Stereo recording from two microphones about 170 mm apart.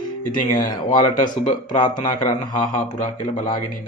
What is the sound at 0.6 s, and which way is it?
A man's voice, 50° left (ahead or behind).